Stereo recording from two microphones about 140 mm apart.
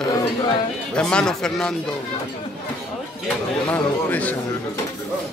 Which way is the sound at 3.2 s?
10° left (ahead or behind).